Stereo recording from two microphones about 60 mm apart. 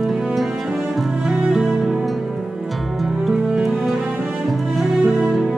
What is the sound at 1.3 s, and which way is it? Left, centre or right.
Music, centre.